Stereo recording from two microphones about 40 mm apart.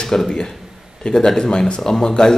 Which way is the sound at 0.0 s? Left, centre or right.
Centre.